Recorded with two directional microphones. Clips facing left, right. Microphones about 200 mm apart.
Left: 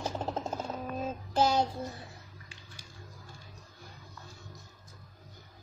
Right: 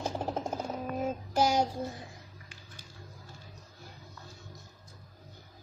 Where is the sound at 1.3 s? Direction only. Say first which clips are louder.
Even; 10° right (ahead or behind).